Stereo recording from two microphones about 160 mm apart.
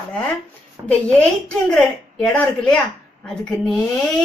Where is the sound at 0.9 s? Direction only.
10° left (ahead or behind).